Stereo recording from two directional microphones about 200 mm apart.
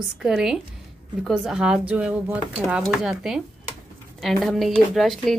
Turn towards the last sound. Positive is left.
turn(degrees=0)  # may be behind; listen again after turning